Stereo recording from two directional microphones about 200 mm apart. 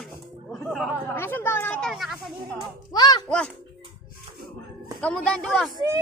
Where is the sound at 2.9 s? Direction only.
20° left (ahead or behind).